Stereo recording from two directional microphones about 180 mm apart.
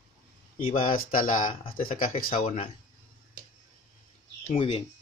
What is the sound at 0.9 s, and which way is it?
Speech, 50° left (ahead or behind).